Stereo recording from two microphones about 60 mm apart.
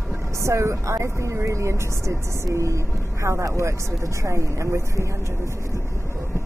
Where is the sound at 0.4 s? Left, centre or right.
Right.